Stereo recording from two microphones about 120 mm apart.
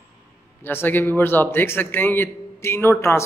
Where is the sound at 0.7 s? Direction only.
15° left (ahead or behind).